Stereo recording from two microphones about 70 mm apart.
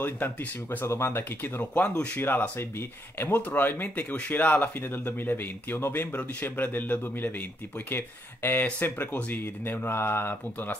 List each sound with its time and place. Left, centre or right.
0.0 s speech: left
0.8 s speech: left